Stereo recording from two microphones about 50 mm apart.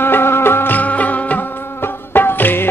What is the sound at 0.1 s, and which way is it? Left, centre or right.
Music, left.